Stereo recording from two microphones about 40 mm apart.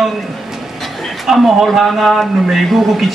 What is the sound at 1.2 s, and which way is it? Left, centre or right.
A man's voice, centre.